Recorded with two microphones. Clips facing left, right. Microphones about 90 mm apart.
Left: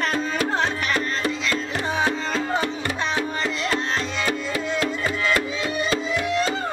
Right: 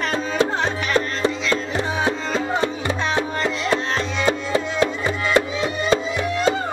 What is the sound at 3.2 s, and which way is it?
Music, 25° right (ahead or behind).